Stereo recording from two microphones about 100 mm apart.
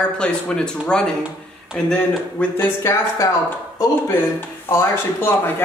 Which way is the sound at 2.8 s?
30° left (ahead or behind).